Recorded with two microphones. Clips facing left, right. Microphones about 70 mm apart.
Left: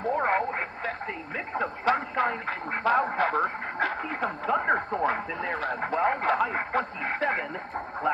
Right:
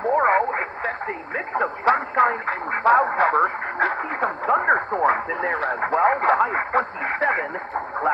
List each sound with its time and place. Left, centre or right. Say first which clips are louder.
0.0 s radio: right 7 dB; right
1.5 s speech: right 6 dB; right